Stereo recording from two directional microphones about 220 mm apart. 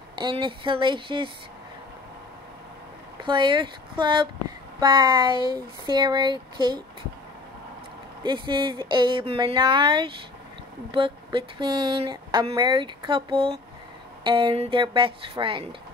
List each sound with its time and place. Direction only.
0.1 s speech: 20° right (ahead or behind)
3.2 s speech: 20° right (ahead or behind)
8.2 s speech: 20° right (ahead or behind)